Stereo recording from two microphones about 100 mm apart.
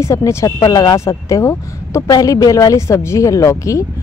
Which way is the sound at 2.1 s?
40° left (ahead or behind).